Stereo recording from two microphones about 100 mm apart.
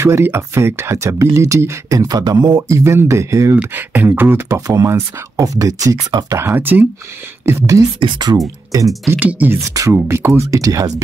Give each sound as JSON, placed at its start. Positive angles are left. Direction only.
{"t": 0.0, "sound": "speech", "side_deg": -25}
{"t": 2.8, "sound": "speech", "side_deg": -30}
{"t": 3.5, "sound": "speech", "side_deg": -20}
{"t": 7.4, "sound": "speech", "side_deg": -30}
{"t": 8.0, "sound": "speech", "side_deg": -50}
{"t": 8.4, "sound": "speech", "side_deg": -35}
{"t": 9.2, "sound": "speech", "side_deg": -15}
{"t": 9.6, "sound": "speech", "side_deg": -30}